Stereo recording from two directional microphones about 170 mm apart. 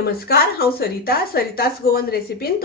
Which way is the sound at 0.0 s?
65° left (ahead or behind).